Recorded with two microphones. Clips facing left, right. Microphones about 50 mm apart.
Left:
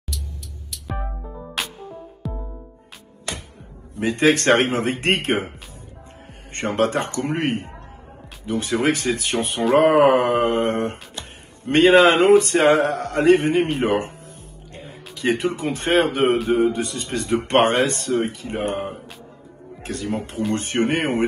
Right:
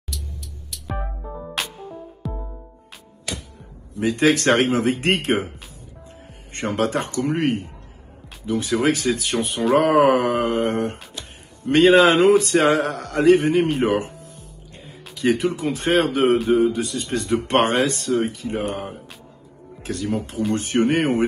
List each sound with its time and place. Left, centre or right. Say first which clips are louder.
0.7 s music: even; centre
3.9 s speech: even; left
6.5 s a man's voice: left 1 dB; left